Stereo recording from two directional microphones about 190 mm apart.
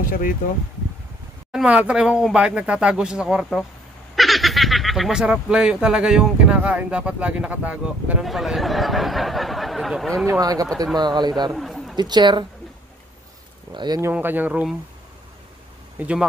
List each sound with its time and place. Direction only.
1.5 s speech: 5° right (ahead or behind)
10.4 s speech: 20° right (ahead or behind)
11.5 s a sound: centre (ahead or behind)
12.0 s speech: 20° right (ahead or behind)
13.7 s speech: 20° right (ahead or behind)
14.1 s speech: 10° right (ahead or behind)
16.0 s speech: 5° right (ahead or behind)